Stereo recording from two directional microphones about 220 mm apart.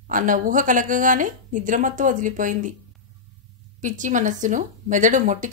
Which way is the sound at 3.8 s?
35° right (ahead or behind).